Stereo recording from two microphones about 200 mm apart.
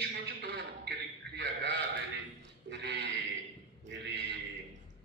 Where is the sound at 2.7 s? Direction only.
55° right (ahead or behind).